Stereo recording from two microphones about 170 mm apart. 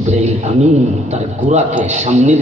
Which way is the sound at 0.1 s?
40° right (ahead or behind).